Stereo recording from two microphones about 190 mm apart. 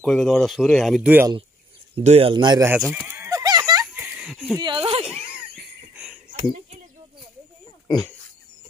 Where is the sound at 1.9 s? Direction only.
35° right (ahead or behind).